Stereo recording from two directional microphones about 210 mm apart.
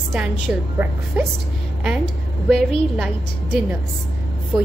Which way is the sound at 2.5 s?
Centre (ahead or behind).